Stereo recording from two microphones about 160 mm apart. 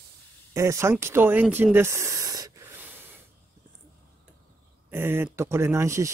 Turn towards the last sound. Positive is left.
turn(degrees=-15)  # may be behind; listen again after turning